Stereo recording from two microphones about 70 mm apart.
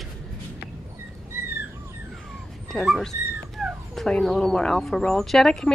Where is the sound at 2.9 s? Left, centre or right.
Centre.